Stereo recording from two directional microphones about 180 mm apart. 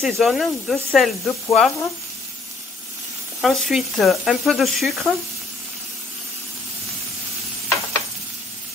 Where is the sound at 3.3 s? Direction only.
Centre (ahead or behind).